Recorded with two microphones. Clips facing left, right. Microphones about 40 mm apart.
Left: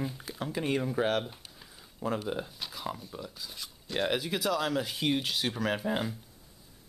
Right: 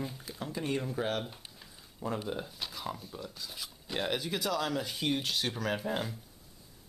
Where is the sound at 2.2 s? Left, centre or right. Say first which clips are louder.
Left 2 dB; centre.